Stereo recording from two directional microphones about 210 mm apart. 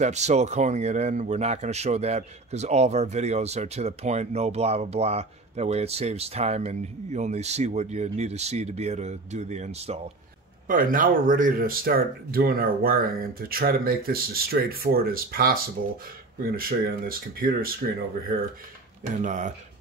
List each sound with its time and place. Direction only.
0.0 s speech: 35° right (ahead or behind)
10.7 s speech: 40° right (ahead or behind)
19.2 s speech: 35° right (ahead or behind)